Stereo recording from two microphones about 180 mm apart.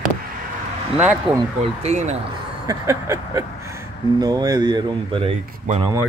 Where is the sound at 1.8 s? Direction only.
40° right (ahead or behind).